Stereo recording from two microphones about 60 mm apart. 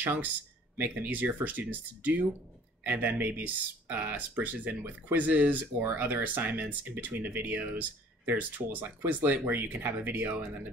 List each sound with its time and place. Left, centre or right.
0.0 s speech: right